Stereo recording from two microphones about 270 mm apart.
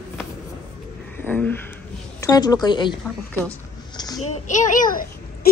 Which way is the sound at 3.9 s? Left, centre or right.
Centre.